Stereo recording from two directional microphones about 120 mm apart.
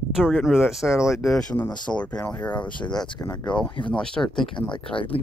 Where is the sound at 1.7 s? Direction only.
40° left (ahead or behind).